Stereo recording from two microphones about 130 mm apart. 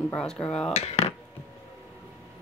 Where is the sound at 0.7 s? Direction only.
55° left (ahead or behind).